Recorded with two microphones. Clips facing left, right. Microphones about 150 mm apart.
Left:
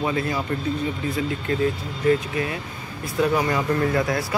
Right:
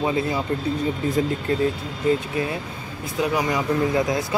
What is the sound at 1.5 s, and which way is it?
Speech, 35° right (ahead or behind).